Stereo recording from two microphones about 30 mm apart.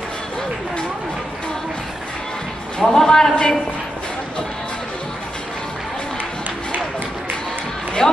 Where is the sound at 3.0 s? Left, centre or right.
Left.